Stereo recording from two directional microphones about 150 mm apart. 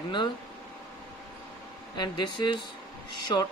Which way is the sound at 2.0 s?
30° left (ahead or behind).